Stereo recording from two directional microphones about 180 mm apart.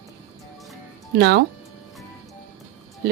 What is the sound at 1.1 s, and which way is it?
Speech, 65° right (ahead or behind).